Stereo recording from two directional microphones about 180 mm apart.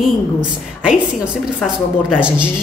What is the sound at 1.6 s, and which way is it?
Speech, 5° right (ahead or behind).